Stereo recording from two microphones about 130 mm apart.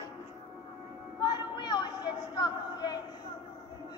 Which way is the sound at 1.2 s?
35° left (ahead or behind).